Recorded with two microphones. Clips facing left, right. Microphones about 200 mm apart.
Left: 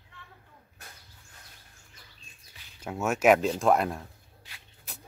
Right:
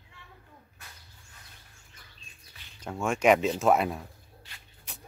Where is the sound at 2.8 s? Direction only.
5° left (ahead or behind).